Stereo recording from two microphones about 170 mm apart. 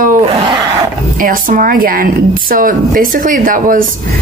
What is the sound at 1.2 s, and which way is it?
Speech, 55° right (ahead or behind).